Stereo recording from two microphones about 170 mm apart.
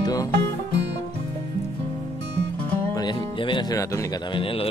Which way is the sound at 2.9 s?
25° left (ahead or behind).